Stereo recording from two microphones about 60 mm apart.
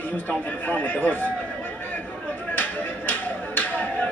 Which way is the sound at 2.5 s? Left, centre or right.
Left.